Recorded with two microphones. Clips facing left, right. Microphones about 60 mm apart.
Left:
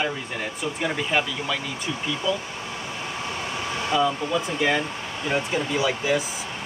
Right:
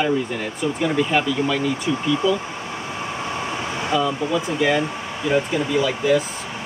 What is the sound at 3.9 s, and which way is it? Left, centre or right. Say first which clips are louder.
Speech: right 2 dB; centre.